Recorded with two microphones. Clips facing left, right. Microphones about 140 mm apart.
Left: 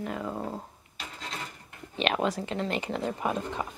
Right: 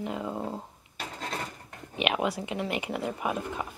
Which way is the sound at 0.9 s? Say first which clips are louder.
Right 5 dB; 50° right (ahead or behind).